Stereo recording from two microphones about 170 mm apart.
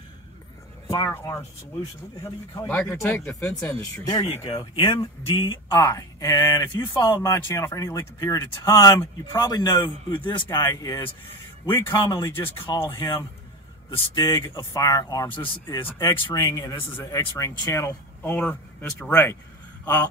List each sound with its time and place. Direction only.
0.8 s speech: 20° left (ahead or behind)
2.9 s speech: 15° left (ahead or behind)
4.3 s speech: 30° left (ahead or behind); by 13.1 s 15° left (ahead or behind)
13.8 s speech: 25° left (ahead or behind)